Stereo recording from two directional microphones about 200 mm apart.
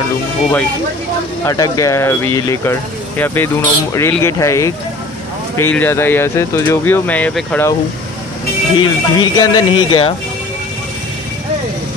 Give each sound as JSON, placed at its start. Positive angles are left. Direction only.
{"t": 1.4, "sound": "speech", "side_deg": 15}
{"t": 8.7, "sound": "speech", "side_deg": 20}